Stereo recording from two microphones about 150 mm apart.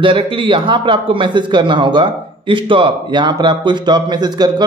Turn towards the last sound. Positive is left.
turn(degrees=-25)  # may be behind; listen again after turning